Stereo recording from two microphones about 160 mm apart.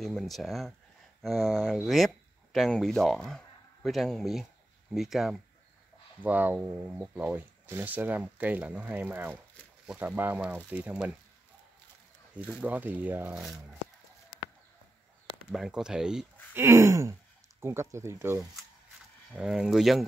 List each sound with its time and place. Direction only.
0.0 s speech: centre (ahead or behind)
12.4 s speech: 5° right (ahead or behind)
15.5 s speech: 5° right (ahead or behind)
16.5 s speech: 15° right (ahead or behind)
19.3 s speech: 5° right (ahead or behind)